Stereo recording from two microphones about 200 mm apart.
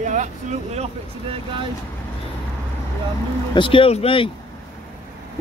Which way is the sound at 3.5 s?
25° left (ahead or behind).